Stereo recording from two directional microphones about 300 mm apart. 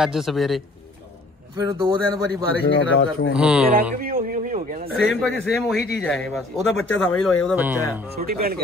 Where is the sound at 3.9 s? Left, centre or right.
Right.